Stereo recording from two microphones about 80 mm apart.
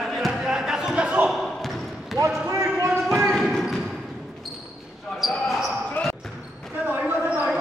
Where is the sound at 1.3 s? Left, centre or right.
Centre.